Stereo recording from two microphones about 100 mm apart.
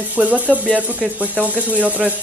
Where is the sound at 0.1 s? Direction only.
15° right (ahead or behind).